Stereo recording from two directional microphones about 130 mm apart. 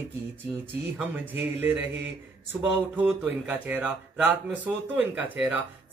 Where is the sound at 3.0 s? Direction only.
10° right (ahead or behind).